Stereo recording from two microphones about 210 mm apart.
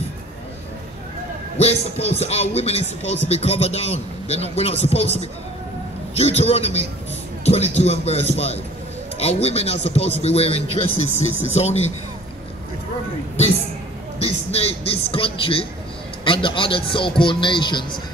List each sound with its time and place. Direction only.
1.6 s a man's voice: 30° left (ahead or behind)
14.2 s a man's voice: 30° left (ahead or behind)